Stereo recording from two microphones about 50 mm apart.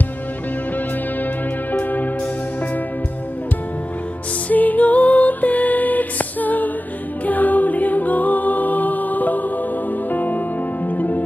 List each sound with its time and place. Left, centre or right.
0.7 s music: left
4.5 s music: left